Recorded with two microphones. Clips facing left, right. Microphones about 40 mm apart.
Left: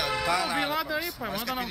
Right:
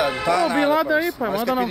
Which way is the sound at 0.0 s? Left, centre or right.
Centre.